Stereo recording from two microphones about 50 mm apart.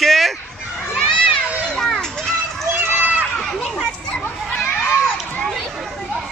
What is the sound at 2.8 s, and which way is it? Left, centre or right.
Run, right.